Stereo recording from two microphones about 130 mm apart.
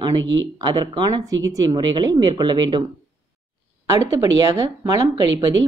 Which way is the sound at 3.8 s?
25° right (ahead or behind).